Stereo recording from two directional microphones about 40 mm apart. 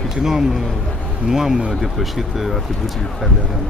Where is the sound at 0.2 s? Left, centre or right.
Centre.